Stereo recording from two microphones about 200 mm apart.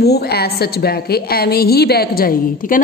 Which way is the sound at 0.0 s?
50° left (ahead or behind).